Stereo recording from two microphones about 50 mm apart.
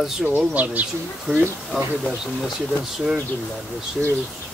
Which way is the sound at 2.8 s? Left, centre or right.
Centre.